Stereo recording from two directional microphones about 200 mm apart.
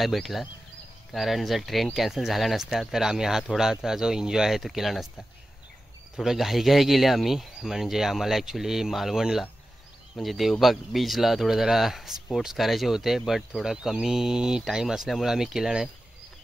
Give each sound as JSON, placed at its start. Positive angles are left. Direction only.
{"t": 0.0, "sound": "speech", "side_deg": 0}
{"t": 6.1, "sound": "speech", "side_deg": 0}